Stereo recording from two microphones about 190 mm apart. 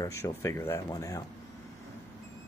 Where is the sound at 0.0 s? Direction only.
15° left (ahead or behind).